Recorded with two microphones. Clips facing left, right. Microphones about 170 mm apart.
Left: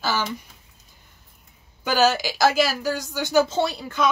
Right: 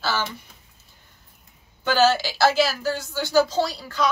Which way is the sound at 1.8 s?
15° left (ahead or behind).